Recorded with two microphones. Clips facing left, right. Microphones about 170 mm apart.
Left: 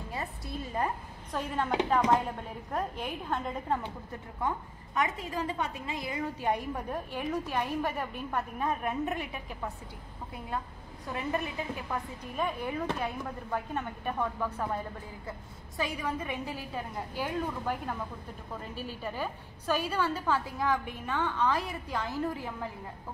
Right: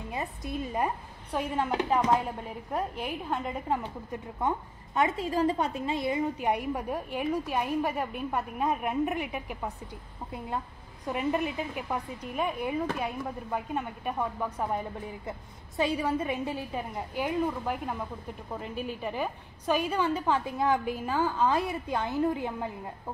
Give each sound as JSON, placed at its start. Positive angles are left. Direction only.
{"t": 0.1, "sound": "a woman's voice", "side_deg": -20}
{"t": 6.4, "sound": "a woman's voice", "side_deg": -10}
{"t": 11.1, "sound": "a woman's voice", "side_deg": -15}
{"t": 16.9, "sound": "a woman's voice", "side_deg": -15}
{"t": 19.0, "sound": "a woman's voice", "side_deg": -15}